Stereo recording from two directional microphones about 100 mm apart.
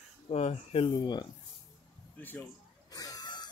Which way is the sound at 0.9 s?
45° left (ahead or behind).